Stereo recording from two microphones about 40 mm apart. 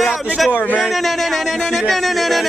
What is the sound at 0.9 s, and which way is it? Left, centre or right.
A man's voice, centre.